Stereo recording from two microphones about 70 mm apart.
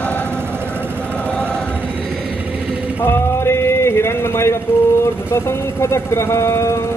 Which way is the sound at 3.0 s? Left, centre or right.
Left.